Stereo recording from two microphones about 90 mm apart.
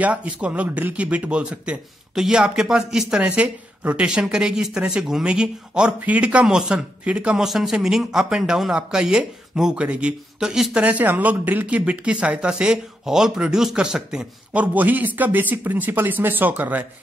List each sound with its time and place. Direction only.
0.0 s speech: 15° right (ahead or behind)
3.2 s speech: 15° right (ahead or behind)